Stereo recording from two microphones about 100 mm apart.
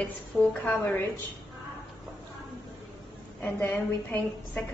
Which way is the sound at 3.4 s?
20° left (ahead or behind).